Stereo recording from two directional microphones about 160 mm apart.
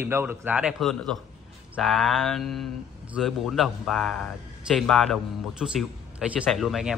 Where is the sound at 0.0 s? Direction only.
15° right (ahead or behind).